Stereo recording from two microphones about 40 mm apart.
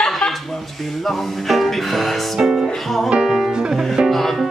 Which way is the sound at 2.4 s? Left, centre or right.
Centre.